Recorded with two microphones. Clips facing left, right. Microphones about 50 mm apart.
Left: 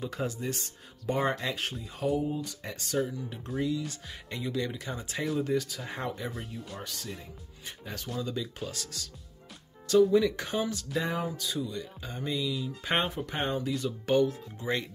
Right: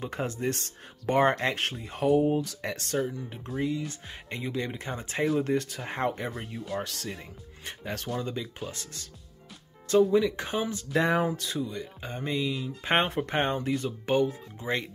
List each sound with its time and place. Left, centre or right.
0.0 s speech: right
3.6 s speech: right
6.7 s speech: right
8.4 s speech: right
10.1 s speech: right
10.9 s speech: right
11.4 s speech: right
13.1 s speech: right
13.8 s speech: right